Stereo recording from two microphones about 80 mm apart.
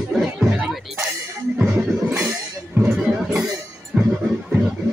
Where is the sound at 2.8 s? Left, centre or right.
Centre.